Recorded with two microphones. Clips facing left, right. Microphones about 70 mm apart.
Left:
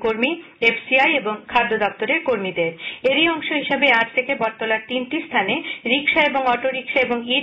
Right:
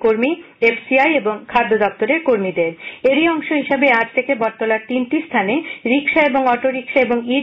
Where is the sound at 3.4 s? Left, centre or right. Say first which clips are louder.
Right 5 dB; centre.